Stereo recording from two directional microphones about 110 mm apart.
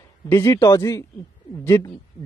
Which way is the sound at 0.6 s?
30° left (ahead or behind).